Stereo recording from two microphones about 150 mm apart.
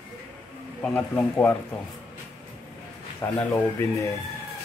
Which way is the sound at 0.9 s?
10° left (ahead or behind).